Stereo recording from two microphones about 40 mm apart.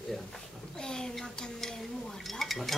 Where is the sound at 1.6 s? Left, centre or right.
Centre.